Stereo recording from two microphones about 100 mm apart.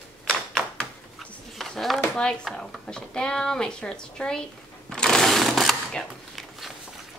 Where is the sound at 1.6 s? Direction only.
Centre (ahead or behind).